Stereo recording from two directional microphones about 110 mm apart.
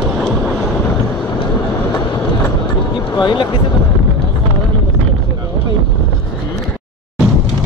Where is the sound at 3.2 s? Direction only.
45° left (ahead or behind).